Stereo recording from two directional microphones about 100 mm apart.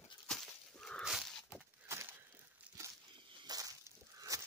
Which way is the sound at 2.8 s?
30° right (ahead or behind).